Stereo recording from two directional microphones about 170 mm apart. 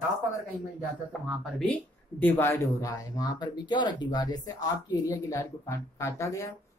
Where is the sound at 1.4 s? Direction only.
5° left (ahead or behind).